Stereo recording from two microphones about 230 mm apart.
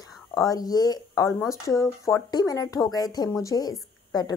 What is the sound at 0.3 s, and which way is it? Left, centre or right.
A woman's voice, centre.